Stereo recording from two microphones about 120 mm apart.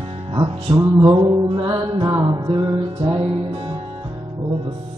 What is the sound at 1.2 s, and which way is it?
Music, 40° right (ahead or behind).